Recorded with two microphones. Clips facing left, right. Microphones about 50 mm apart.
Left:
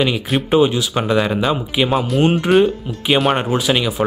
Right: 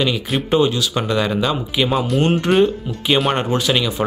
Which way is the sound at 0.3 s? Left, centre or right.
Centre.